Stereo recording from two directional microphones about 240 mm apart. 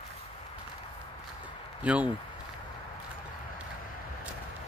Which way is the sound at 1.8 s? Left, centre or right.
Centre.